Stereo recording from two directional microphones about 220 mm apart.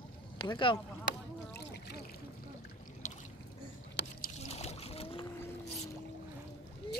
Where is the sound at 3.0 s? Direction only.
35° left (ahead or behind).